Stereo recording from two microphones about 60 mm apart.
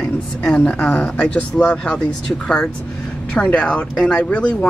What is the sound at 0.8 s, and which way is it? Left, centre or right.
A woman's voice, left.